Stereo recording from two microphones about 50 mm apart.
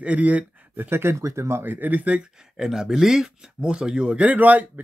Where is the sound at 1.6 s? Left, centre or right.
Right.